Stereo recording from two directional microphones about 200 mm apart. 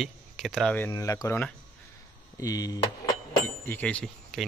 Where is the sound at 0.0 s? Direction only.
Centre (ahead or behind).